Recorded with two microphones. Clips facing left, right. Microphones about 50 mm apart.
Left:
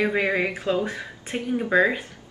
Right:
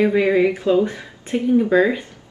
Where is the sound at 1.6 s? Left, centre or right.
Centre.